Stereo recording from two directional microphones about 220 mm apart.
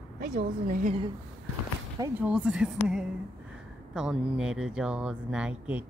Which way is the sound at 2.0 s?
5° right (ahead or behind).